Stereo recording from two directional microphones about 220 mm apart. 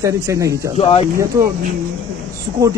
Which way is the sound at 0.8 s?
30° left (ahead or behind).